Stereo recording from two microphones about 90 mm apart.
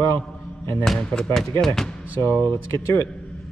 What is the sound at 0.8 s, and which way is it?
Speech, 5° left (ahead or behind).